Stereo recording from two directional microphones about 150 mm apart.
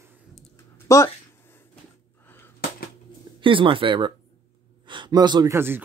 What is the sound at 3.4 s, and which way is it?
Speech, 35° right (ahead or behind).